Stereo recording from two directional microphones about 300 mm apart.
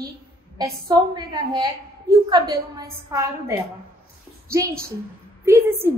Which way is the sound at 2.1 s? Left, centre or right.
Centre.